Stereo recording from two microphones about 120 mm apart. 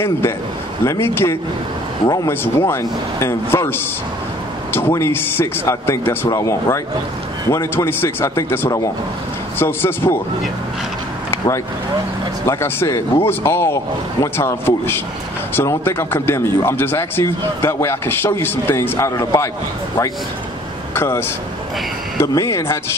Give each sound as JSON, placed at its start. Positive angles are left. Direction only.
{"t": 0.8, "sound": "speech", "side_deg": 20}
{"t": 11.2, "sound": "vehicle", "side_deg": 25}
{"t": 12.4, "sound": "speech", "side_deg": 20}
{"t": 20.9, "sound": "speech", "side_deg": 20}